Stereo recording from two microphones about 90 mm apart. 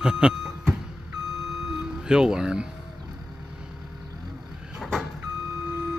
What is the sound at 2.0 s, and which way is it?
Speech, 10° right (ahead or behind).